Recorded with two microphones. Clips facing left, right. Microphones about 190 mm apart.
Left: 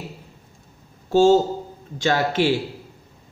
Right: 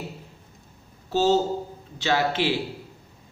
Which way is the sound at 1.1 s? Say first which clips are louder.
Left 6 dB; 45° left (ahead or behind).